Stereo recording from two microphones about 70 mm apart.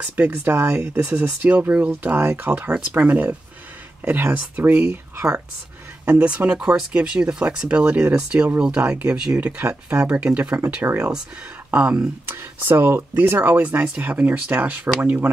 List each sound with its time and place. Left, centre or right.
0.0 s speech: right
4.8 s speech: right
6.0 s speech: centre
10.9 s speech: right
11.7 s speech: centre
12.3 s speech: right